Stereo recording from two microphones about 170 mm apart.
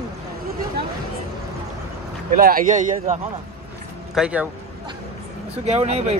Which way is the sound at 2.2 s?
55° right (ahead or behind).